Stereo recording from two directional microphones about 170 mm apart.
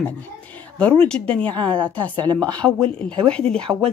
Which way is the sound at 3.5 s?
5° left (ahead or behind).